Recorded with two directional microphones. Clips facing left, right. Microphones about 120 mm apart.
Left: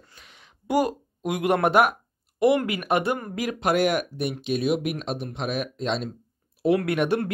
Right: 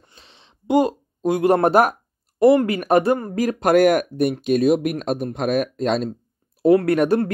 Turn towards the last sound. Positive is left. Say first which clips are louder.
# right 6 dB
turn(degrees=-40)  # may be behind; listen again after turning